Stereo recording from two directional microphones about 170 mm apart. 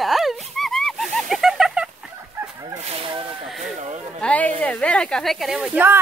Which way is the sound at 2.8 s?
35° right (ahead or behind).